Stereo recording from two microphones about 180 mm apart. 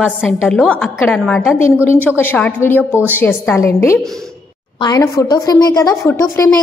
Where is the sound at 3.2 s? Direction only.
10° left (ahead or behind).